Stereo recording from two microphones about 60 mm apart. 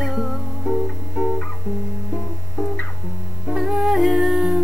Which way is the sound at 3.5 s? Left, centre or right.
Centre.